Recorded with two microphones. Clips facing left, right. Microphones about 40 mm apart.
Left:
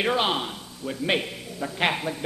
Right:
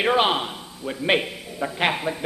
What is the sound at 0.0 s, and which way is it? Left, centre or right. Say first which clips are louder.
A man's voice: right 4 dB; centre.